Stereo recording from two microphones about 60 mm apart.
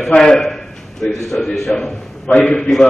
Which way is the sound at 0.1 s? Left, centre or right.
Centre.